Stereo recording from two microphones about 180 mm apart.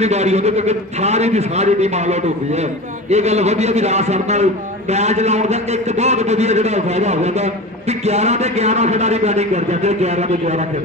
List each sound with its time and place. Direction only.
0.0 s a man's voice: 40° right (ahead or behind)